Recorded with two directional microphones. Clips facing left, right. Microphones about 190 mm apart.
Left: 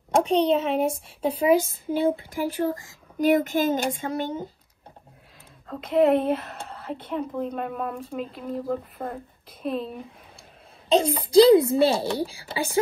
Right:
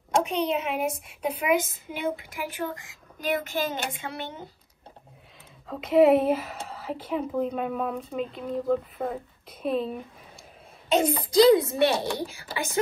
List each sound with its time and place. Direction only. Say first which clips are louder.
0.2 s a woman's voice: left 6 dB; 30° left (ahead or behind)
3.4 s a woman's voice: left 6 dB; 45° left (ahead or behind)
5.7 s a woman's voice: right 1 dB; centre (ahead or behind)
10.9 s a woman's voice: left 2 dB; 30° left (ahead or behind)